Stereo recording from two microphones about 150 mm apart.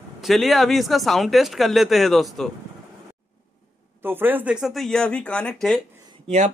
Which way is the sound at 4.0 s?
15° right (ahead or behind).